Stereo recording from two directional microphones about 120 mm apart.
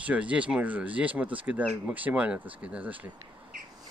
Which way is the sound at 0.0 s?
10° right (ahead or behind).